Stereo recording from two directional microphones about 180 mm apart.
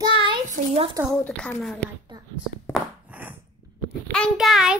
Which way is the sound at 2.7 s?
10° right (ahead or behind).